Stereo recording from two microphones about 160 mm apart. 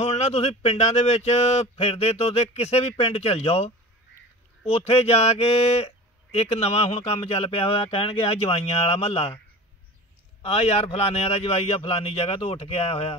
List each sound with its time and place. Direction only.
0.0 s speech: 45° left (ahead or behind)
10.4 s speech: 40° left (ahead or behind)